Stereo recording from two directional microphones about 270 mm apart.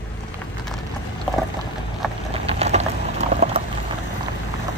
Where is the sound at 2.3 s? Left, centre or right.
Right.